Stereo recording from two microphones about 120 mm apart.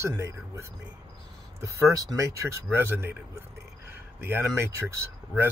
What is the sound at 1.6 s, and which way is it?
Speech, 25° right (ahead or behind).